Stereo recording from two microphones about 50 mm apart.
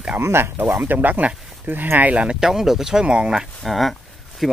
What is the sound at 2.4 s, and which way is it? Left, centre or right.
Speech, centre.